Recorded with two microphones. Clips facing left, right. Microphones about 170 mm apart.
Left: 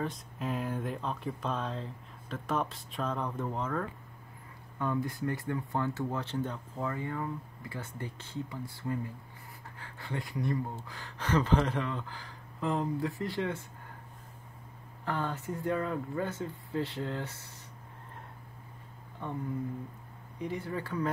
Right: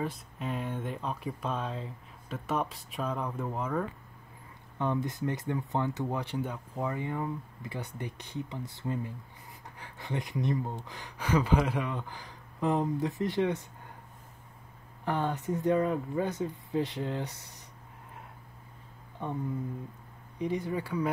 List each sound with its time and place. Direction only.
0.0 s speech: centre (ahead or behind)
4.7 s speech: 20° right (ahead or behind)
15.0 s speech: 20° right (ahead or behind)
20.3 s speech: 15° right (ahead or behind)